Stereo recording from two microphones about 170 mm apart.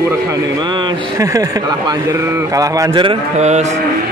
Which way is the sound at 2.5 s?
20° right (ahead or behind).